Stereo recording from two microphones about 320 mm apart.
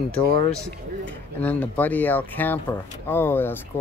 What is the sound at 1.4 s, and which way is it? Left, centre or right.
Speech, centre.